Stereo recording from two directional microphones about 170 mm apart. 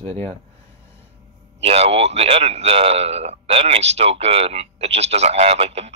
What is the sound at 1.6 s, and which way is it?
A man's voice, 35° right (ahead or behind).